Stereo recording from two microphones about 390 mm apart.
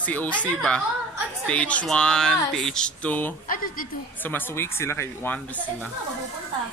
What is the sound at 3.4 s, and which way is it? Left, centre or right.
Speech, left.